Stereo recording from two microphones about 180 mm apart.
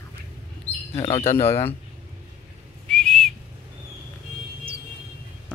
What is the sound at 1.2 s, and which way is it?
Speech, 15° left (ahead or behind).